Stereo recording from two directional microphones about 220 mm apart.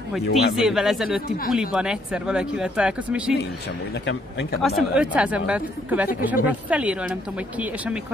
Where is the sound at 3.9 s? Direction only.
50° left (ahead or behind).